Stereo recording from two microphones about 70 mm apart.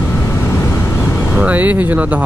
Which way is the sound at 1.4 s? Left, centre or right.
Right.